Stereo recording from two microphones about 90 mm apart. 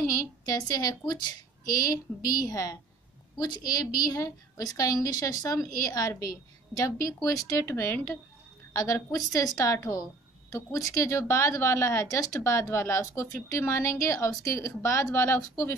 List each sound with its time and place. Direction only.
0.0 s a woman's voice: 40° left (ahead or behind)
7.6 s speech: 25° left (ahead or behind)